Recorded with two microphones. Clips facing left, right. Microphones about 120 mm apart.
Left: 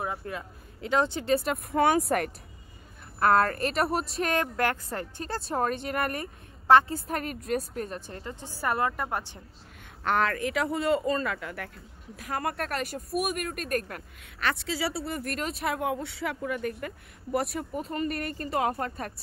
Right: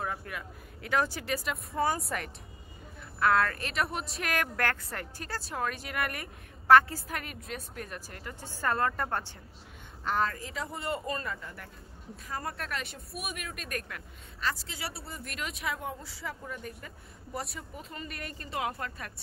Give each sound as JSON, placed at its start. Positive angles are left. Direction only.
{"t": 0.2, "sound": "speech", "side_deg": 30}
{"t": 1.7, "sound": "speech", "side_deg": 75}
{"t": 3.2, "sound": "a woman's voice", "side_deg": 40}
{"t": 6.7, "sound": "speech", "side_deg": 25}
{"t": 7.2, "sound": "a woman's voice", "side_deg": 40}
{"t": 10.0, "sound": "speech", "side_deg": 75}
{"t": 14.7, "sound": "speech", "side_deg": 90}
{"t": 15.2, "sound": "speech", "side_deg": 40}
{"t": 15.8, "sound": "speech", "side_deg": 75}
{"t": 17.9, "sound": "a woman's voice", "side_deg": 50}